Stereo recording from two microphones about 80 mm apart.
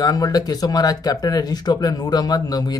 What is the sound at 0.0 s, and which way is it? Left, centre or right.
Speech, left.